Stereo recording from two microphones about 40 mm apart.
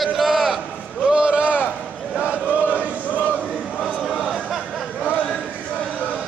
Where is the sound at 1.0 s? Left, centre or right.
Right.